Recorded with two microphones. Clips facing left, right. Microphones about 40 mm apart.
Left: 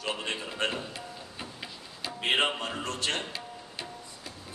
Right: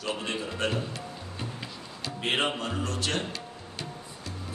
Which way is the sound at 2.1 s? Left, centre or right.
Centre.